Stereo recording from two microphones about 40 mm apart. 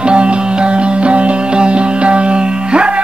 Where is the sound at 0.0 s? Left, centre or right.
Right.